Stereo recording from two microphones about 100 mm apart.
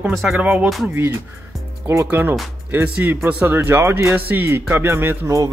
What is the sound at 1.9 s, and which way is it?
Speech, 20° right (ahead or behind).